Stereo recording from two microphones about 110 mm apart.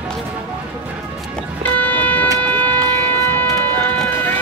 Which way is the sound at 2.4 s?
15° left (ahead or behind).